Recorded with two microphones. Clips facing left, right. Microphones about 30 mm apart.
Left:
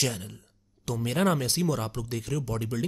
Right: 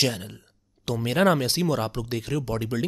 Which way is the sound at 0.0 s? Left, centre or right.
Right.